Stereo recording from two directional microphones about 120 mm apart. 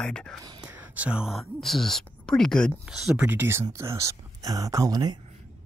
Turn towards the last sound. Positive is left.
turn(degrees=-30)  # may be behind; listen again after turning